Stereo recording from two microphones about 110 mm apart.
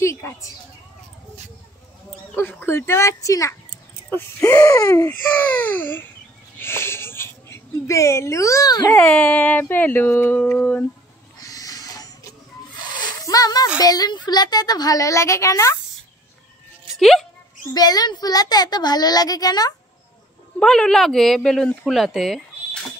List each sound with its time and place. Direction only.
0.0 s children playing: 25° left (ahead or behind)
2.3 s speech: 20° left (ahead or behind)
4.1 s wheeze: 25° left (ahead or behind)
4.6 s speech: 30° left (ahead or behind)
6.6 s a sound: 20° left (ahead or behind)
8.9 s speech: 10° left (ahead or behind)
11.3 s owl: 35° left (ahead or behind)
13.2 s speech: 35° left (ahead or behind)
17.0 s speech: centre (ahead or behind)
17.7 s speech: 35° left (ahead or behind)
20.5 s speech: 5° left (ahead or behind)